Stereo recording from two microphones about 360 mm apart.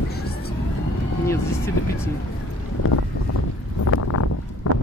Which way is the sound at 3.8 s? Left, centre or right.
Left.